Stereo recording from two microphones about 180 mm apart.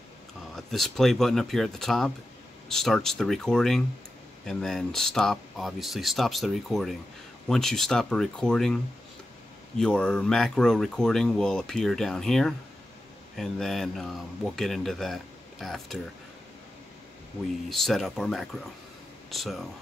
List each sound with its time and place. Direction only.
0.6 s speech: centre (ahead or behind)
9.8 s speech: 5° left (ahead or behind)
17.6 s speech: centre (ahead or behind)